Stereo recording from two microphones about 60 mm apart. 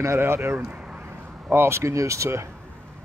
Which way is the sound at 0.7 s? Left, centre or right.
Centre.